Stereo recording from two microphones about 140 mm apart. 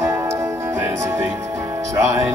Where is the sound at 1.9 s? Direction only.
20° right (ahead or behind).